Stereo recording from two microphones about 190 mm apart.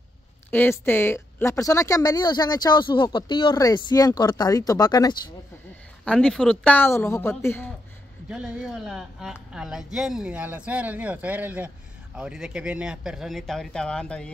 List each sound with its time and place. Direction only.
0.5 s speech: 10° left (ahead or behind)
6.0 s a woman's voice: 5° left (ahead or behind)
8.3 s speech: centre (ahead or behind)